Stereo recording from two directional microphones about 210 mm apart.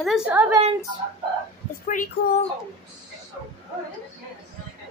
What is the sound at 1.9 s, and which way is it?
Speech, 40° left (ahead or behind).